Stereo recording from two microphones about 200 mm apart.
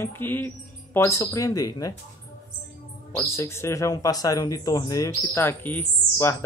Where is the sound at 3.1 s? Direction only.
15° left (ahead or behind).